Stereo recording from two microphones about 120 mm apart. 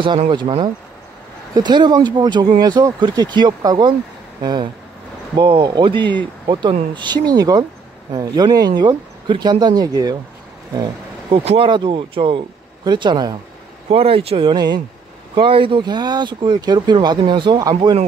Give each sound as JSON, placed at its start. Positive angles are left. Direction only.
{"t": 0.3, "sound": "speech", "side_deg": -40}
{"t": 13.8, "sound": "speech", "side_deg": -50}